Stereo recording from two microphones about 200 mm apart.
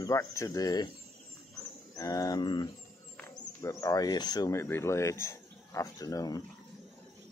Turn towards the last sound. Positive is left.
turn(degrees=20)  # may be behind; listen again after turning